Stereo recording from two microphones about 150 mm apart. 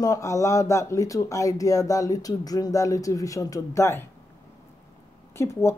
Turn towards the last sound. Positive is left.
turn(degrees=20)  # may be behind; listen again after turning